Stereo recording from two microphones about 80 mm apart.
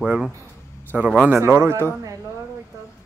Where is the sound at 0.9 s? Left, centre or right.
Centre.